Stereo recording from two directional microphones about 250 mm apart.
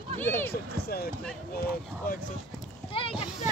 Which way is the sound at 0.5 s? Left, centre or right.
Left.